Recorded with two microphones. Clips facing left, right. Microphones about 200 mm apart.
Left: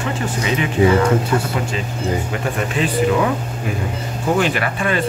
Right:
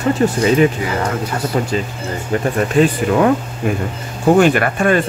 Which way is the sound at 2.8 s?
40° right (ahead or behind).